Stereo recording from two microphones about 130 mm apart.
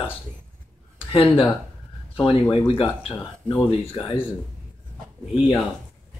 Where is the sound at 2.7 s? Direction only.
45° left (ahead or behind).